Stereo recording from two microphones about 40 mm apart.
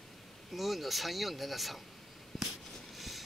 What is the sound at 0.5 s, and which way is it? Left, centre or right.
Speech, centre.